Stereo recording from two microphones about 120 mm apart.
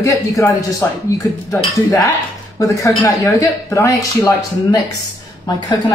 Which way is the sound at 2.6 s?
25° left (ahead or behind).